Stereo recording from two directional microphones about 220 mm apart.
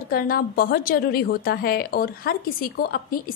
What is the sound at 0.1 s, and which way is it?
A woman's voice, 40° left (ahead or behind).